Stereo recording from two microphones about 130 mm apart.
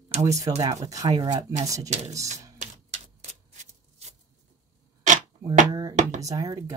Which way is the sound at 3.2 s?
60° right (ahead or behind).